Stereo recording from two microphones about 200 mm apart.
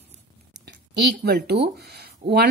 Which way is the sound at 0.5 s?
55° right (ahead or behind).